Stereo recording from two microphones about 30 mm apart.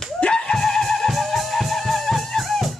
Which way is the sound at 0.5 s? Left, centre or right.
Centre.